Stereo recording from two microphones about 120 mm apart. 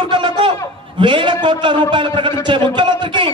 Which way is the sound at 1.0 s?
40° right (ahead or behind).